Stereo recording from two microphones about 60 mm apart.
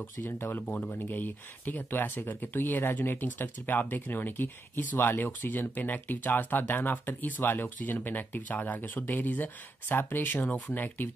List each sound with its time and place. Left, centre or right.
0.3 s speech: left
0.7 s speech: left